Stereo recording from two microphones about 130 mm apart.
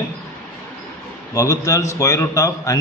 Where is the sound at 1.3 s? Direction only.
25° left (ahead or behind).